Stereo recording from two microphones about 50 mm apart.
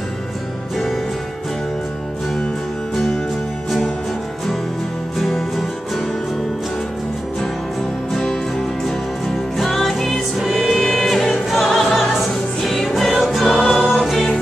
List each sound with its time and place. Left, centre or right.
5.2 s music: centre
8.1 s music: centre
13.6 s choir: centre
14.1 s music: centre